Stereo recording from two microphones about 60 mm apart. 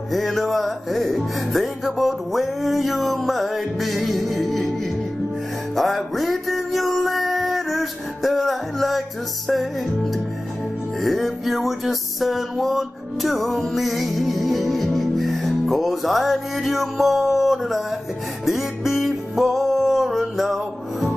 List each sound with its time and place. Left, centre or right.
0.1 s music: centre
5.8 s music: centre